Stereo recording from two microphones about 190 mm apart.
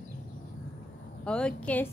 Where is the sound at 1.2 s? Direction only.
5° left (ahead or behind).